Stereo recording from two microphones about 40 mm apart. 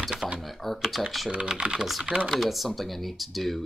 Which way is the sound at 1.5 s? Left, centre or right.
Centre.